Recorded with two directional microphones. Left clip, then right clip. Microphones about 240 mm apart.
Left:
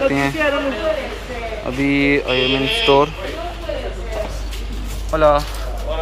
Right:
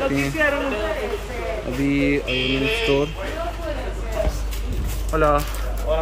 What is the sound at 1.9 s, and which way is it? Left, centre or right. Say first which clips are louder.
Mantra: left 5 dB; centre.